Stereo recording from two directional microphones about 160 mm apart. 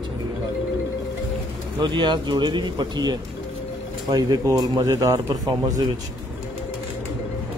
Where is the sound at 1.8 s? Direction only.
30° right (ahead or behind).